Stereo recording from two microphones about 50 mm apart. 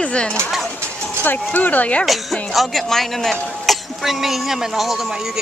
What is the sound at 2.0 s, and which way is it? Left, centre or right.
Speech, centre.